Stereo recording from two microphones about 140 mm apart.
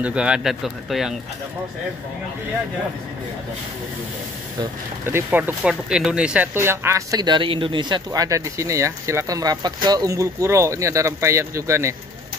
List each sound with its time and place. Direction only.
0.0 s speech: 5° right (ahead or behind)
5.0 s speech: 15° right (ahead or behind)